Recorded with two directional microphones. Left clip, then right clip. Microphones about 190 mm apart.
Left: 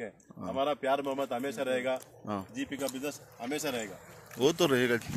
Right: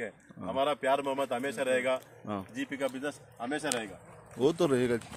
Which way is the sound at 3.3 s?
30° left (ahead or behind).